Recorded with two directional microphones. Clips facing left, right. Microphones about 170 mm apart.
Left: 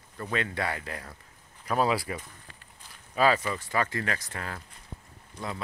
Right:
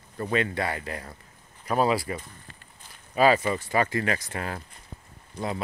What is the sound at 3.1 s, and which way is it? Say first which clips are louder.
Speech: right 4 dB; 10° right (ahead or behind).